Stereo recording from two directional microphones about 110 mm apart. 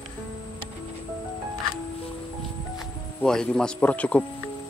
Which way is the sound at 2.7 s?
5° left (ahead or behind).